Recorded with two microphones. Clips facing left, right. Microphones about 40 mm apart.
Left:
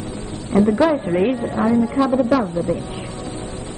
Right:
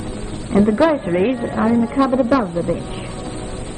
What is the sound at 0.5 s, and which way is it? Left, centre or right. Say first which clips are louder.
Speech: right 1 dB; centre.